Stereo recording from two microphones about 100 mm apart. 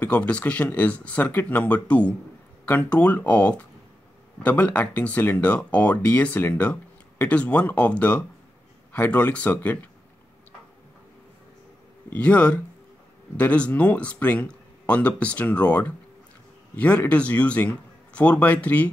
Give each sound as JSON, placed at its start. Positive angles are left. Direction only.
{"t": 0.0, "sound": "speech", "side_deg": 10}
{"t": 12.1, "sound": "speech", "side_deg": 10}